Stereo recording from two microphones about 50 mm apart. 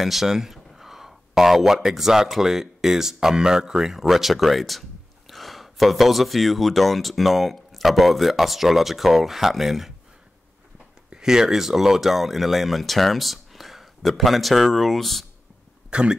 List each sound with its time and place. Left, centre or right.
0.0 s speech: centre
11.1 s speech: centre
15.9 s speech: centre